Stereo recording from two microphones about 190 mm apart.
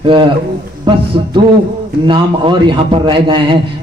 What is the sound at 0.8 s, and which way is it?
A man's voice, 25° right (ahead or behind).